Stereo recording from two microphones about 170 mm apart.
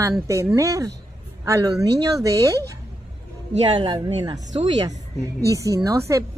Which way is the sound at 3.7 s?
25° right (ahead or behind).